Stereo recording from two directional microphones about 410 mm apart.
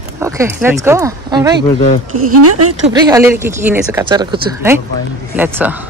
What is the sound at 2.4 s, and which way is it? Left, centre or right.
Speech, right.